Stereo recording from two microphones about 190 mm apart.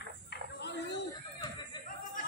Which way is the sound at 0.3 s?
60° left (ahead or behind).